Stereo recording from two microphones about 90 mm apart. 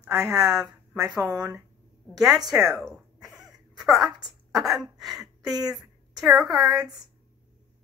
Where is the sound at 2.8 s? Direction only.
5° right (ahead or behind).